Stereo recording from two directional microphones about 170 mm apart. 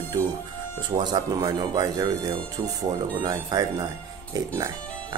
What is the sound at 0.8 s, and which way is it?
Speech, 25° right (ahead or behind).